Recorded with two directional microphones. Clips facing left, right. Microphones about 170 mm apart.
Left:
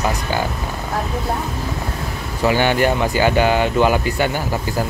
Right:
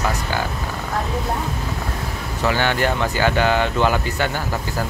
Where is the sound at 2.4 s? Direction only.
15° left (ahead or behind).